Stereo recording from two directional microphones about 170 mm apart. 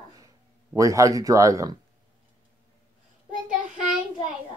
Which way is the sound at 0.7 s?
20° right (ahead or behind).